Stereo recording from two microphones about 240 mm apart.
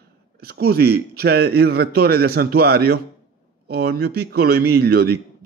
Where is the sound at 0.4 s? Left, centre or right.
Right.